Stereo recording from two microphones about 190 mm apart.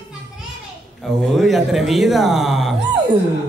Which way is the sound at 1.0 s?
Centre (ahead or behind).